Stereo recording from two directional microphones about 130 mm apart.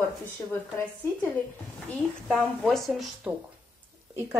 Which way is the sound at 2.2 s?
Centre (ahead or behind).